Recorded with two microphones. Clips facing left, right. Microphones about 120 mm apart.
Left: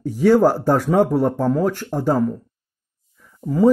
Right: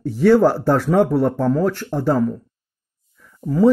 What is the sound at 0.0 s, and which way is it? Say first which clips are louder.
Speech: right 1 dB; 45° left (ahead or behind).